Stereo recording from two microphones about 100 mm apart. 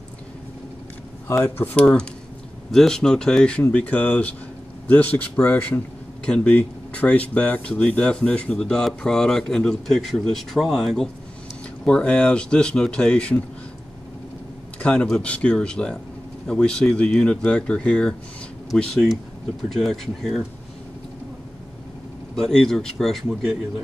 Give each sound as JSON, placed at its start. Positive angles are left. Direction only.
{"t": 1.2, "sound": "speech", "side_deg": 25}
{"t": 1.8, "sound": "speech", "side_deg": 10}
{"t": 14.8, "sound": "speech", "side_deg": 10}
{"t": 22.3, "sound": "speech", "side_deg": 5}